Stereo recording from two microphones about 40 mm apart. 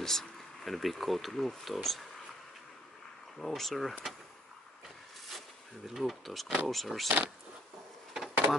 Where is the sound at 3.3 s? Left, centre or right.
Centre.